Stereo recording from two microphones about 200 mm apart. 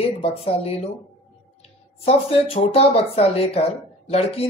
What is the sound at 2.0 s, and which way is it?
Speech, 30° left (ahead or behind).